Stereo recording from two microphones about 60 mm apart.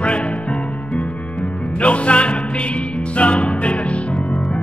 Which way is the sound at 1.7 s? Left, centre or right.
Left.